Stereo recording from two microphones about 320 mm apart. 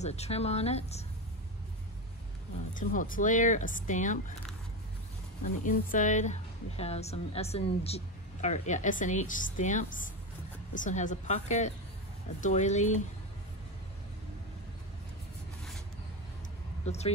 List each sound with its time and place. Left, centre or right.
0.0 s a woman's voice: centre
2.7 s a woman's voice: left
5.4 s a woman's voice: left
16.8 s speech: centre